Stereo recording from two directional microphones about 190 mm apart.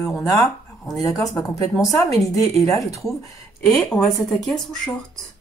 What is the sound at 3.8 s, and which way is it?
Speech, centre (ahead or behind).